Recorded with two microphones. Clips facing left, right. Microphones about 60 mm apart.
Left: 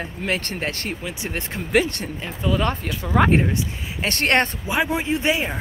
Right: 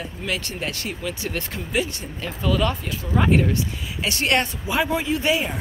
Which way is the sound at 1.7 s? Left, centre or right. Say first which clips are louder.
Left 6 dB; left.